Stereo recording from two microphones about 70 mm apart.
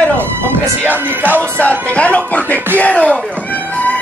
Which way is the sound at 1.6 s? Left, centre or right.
Centre.